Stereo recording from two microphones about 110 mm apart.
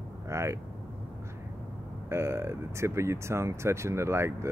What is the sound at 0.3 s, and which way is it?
Speech, 25° right (ahead or behind).